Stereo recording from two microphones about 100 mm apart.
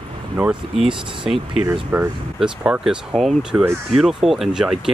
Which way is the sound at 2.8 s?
5° right (ahead or behind).